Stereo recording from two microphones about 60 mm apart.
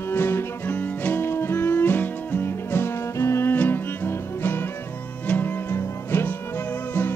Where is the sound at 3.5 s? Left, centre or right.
Left.